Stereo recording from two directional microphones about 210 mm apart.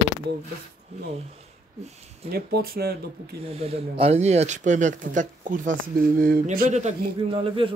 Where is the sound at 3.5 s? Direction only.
30° right (ahead or behind).